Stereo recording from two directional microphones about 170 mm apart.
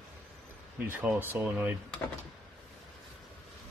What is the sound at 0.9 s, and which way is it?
Speech, 10° right (ahead or behind).